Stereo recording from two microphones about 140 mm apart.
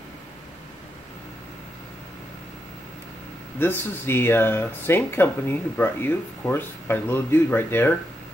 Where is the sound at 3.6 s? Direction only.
15° left (ahead or behind).